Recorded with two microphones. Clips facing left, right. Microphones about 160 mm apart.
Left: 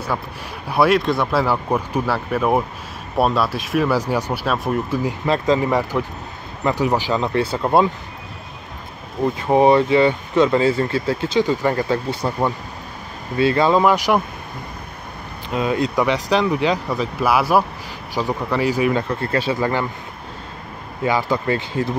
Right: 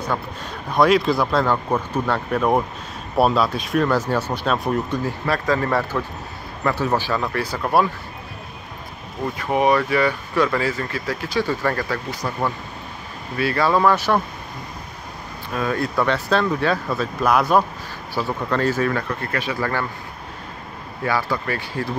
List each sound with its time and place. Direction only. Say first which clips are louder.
0.7 s speech: even; 5° left (ahead or behind)
5.0 s speech: left 3 dB; 20° left (ahead or behind)
9.4 s speech: left 4 dB; 30° left (ahead or behind)
15.5 s speech: left 3 dB; 20° left (ahead or behind)
19.2 s speech: left 4 dB; 30° left (ahead or behind)
21.0 s speech: left 3 dB; 20° left (ahead or behind)